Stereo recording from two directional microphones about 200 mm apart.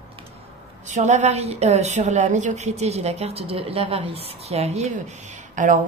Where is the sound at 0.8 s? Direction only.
35° right (ahead or behind).